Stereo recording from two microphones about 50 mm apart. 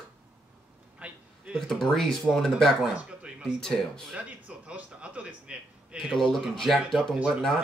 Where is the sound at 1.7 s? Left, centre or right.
Centre.